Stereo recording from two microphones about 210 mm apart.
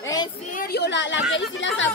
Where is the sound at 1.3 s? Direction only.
60° left (ahead or behind).